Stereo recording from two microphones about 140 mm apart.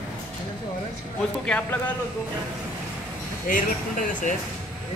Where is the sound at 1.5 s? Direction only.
10° left (ahead or behind).